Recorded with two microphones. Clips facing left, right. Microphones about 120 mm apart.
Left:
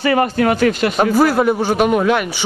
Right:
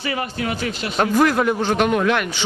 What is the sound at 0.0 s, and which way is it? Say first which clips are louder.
Speech: left 10 dB; 55° left (ahead or behind).